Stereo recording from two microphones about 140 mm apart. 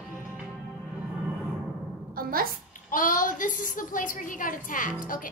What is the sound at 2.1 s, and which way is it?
Music, 90° right.